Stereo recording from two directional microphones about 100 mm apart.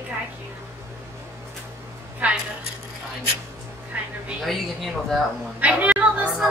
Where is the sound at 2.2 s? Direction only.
15° right (ahead or behind).